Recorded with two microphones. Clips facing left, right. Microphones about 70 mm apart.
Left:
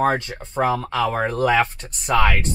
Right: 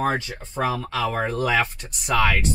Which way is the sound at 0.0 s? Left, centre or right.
Left.